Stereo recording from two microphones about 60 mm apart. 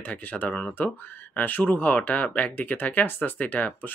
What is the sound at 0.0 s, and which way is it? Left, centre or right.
Speech, left.